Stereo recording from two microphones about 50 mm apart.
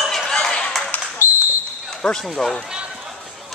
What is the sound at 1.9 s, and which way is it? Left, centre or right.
Basketball bounce, centre.